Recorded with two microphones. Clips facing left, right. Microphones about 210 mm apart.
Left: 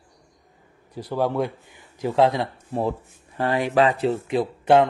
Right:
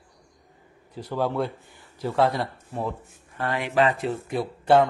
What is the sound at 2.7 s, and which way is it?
Speech, 35° left (ahead or behind).